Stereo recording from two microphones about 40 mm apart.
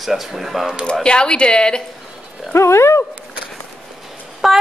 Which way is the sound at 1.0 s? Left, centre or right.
Left.